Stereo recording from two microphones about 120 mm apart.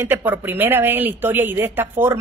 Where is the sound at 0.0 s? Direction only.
15° right (ahead or behind).